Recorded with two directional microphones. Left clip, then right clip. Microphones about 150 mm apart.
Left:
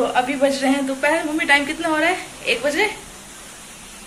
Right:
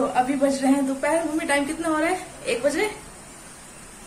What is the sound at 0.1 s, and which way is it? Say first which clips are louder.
A man's voice: left 3 dB; 10° right (ahead or behind).